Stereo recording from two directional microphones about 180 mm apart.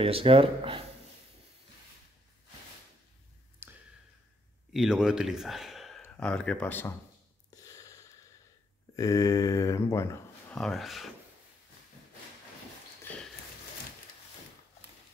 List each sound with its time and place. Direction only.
0.0 s speech: 30° right (ahead or behind)
3.6 s a sound: 10° right (ahead or behind)
4.7 s speech: 5° right (ahead or behind)
7.5 s a sound: 20° left (ahead or behind)
8.9 s speech: 20° left (ahead or behind)
10.5 s speech: centre (ahead or behind)